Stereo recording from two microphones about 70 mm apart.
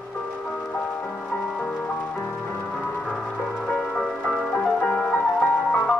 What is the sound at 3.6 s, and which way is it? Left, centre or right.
Music, centre.